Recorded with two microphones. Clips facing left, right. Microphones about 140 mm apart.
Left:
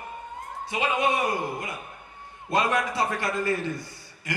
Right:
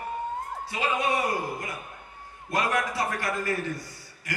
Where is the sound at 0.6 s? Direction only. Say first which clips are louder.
Left 3 dB; 20° left (ahead or behind).